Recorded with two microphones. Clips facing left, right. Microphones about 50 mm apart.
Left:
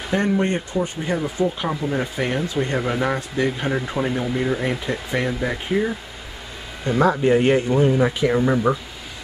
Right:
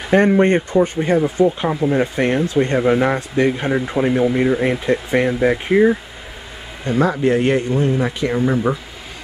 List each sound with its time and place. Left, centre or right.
0.1 s speech: right
1.1 s speech: centre
2.2 s speech: right
2.8 s speech: right
3.2 s speech: right
3.5 s speech: centre
4.6 s speech: right
6.9 s speech: centre
7.6 s speech: centre
7.9 s speech: centre